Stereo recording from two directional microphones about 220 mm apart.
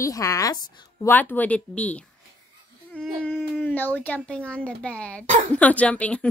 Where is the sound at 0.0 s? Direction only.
15° left (ahead or behind).